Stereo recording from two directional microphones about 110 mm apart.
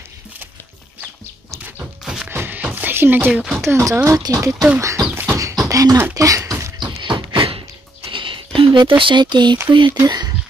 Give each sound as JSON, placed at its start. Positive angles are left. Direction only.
{"t": 1.0, "sound": "a sound", "side_deg": -15}
{"t": 2.2, "sound": "music", "side_deg": -15}
{"t": 3.6, "sound": "speech", "side_deg": -25}
{"t": 5.1, "sound": "beatboxing", "side_deg": -20}
{"t": 5.7, "sound": "speech", "side_deg": -30}
{"t": 7.0, "sound": "a sound", "side_deg": -45}
{"t": 9.7, "sound": "speech", "side_deg": -45}